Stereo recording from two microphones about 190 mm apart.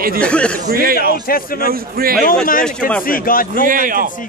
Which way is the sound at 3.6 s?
45° right (ahead or behind).